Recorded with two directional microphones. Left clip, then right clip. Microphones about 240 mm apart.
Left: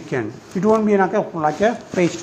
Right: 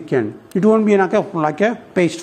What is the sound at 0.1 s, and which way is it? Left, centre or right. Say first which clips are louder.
Speech: right 5 dB; right.